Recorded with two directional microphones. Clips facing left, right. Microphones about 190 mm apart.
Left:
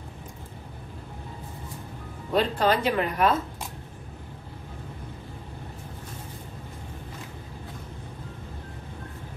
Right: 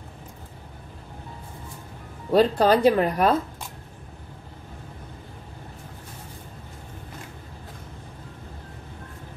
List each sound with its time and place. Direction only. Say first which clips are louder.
2.3 s a woman's voice: right 5 dB; 40° right (ahead or behind)